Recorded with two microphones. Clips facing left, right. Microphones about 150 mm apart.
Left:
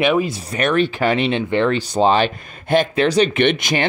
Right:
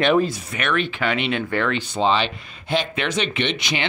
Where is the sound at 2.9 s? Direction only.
35° left (ahead or behind).